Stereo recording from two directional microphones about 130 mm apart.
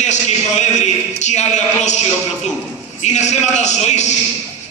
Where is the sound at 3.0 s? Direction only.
60° left (ahead or behind).